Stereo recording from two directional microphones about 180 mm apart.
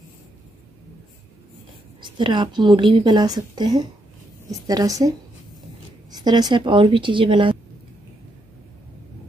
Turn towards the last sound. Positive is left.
turn(degrees=-25)  # may be behind; listen again after turning